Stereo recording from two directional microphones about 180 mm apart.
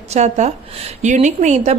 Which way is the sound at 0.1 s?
40° right (ahead or behind).